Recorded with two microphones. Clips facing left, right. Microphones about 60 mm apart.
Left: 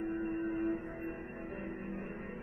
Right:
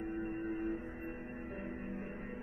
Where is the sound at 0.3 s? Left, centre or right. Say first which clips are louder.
Left 4 dB; left.